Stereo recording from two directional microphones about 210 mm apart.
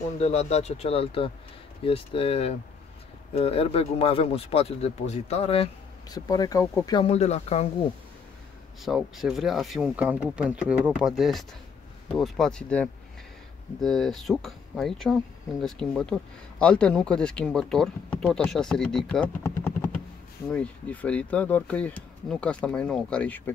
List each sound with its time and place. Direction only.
0.2 s speech: 30° left (ahead or behind)
6.1 s speech: 20° left (ahead or behind)
8.8 s speech: centre (ahead or behind)